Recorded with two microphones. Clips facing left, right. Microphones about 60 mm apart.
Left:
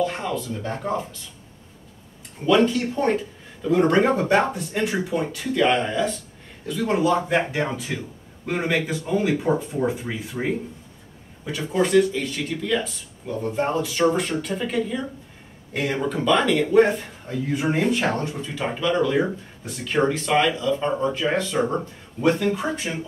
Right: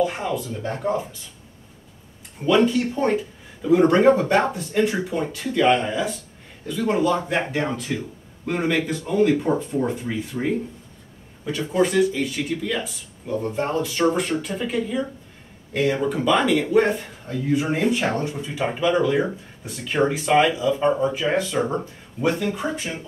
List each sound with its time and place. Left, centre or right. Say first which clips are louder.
0.0 s speech: right 2 dB; centre
2.4 s speech: even; centre